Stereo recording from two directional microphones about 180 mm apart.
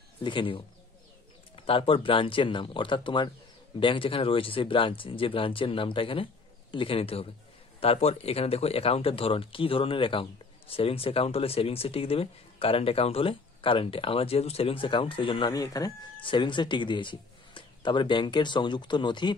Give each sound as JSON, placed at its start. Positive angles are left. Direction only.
{"t": 0.2, "sound": "speech", "side_deg": 25}
{"t": 1.7, "sound": "speech", "side_deg": 30}